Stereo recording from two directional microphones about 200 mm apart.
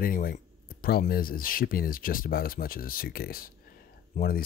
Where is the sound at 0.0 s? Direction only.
45° left (ahead or behind).